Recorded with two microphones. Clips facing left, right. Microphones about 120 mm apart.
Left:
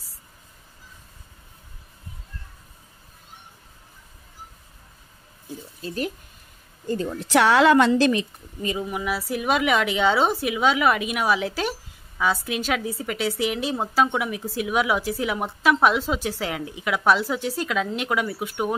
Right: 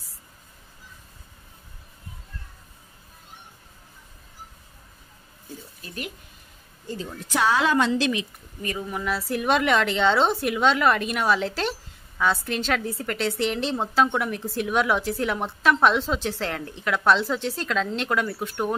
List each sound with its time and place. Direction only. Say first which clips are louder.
5.8 s speech: left 8 dB; 30° left (ahead or behind)
6.9 s speech: left 7 dB; 60° left (ahead or behind)
7.9 s a woman's voice: left 5 dB; 45° left (ahead or behind)
8.6 s a woman's voice: left 2 dB; 15° left (ahead or behind)